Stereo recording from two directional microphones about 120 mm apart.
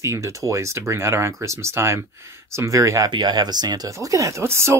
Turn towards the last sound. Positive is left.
turn(degrees=-20)  # may be behind; listen again after turning